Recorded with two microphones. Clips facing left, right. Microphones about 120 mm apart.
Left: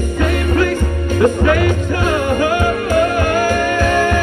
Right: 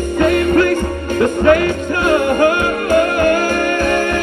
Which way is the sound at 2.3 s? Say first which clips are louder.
Right 2 dB; 55° right (ahead or behind).